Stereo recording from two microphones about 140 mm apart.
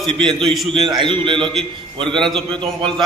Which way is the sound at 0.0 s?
5° left (ahead or behind).